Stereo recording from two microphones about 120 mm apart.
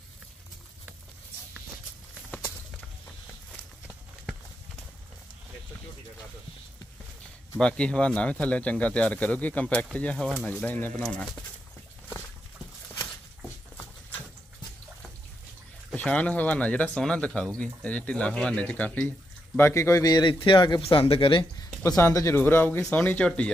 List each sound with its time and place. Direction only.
2.3 s clip-clop: 15° left (ahead or behind)
7.5 s speech: 5° left (ahead or behind)
11.0 s speech: 5° left (ahead or behind)
15.9 s speech: 10° left (ahead or behind); by 20.8 s 40° left (ahead or behind)
20.8 s speech: 50° left (ahead or behind)
21.8 s speech: 25° left (ahead or behind); by 23.5 s 10° left (ahead or behind)